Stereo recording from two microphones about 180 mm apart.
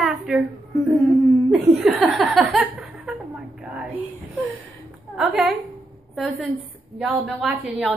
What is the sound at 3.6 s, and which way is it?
Whispering, 5° right (ahead or behind).